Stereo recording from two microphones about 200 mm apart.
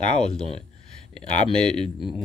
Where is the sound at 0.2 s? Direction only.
5° left (ahead or behind).